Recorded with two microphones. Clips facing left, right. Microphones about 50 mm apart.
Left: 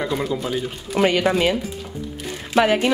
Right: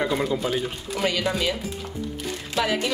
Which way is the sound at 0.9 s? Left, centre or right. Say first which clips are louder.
Left 7 dB; left.